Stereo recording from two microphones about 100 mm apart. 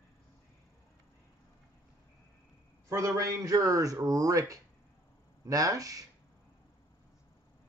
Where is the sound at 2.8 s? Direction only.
35° right (ahead or behind).